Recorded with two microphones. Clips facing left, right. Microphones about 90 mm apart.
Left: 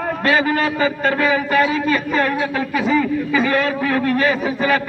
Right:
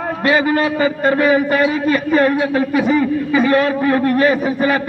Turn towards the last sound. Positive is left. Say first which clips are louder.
# right 4 dB
turn(degrees=-20)  # may be behind; listen again after turning